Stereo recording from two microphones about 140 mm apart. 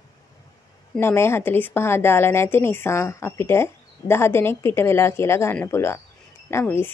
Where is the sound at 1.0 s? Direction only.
15° left (ahead or behind).